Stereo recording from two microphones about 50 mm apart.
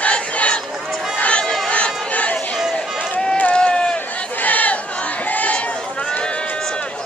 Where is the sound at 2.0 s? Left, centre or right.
Left.